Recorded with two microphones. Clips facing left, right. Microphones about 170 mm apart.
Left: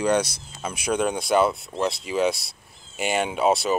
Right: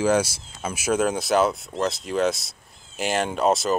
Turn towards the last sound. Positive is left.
turn(degrees=0)  # may be behind; listen again after turning